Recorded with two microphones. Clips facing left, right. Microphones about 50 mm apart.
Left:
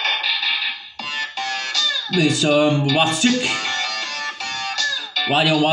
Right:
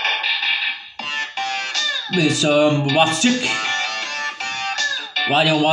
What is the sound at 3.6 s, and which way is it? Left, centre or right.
Music, right.